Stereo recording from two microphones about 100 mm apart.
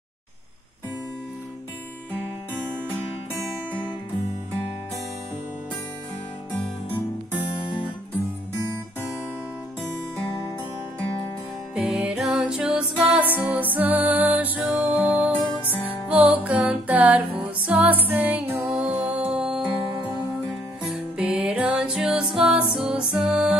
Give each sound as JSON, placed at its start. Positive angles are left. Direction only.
{"t": 11.7, "sound": "music", "side_deg": -5}
{"t": 15.6, "sound": "music", "side_deg": 20}
{"t": 15.9, "sound": "music", "side_deg": -15}
{"t": 20.9, "sound": "music", "side_deg": -5}